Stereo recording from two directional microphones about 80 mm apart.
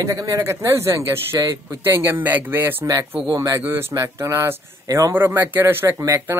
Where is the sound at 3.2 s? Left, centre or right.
Right.